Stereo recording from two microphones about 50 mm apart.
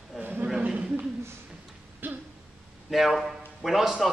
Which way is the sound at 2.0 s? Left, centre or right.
Right.